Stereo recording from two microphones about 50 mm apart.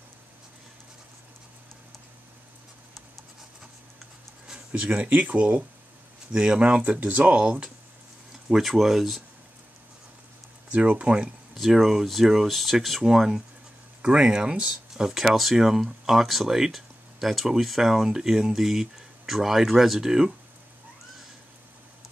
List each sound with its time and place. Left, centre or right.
4.9 s speech: right
8.3 s speech: centre
10.7 s speech: right
11.5 s speech: centre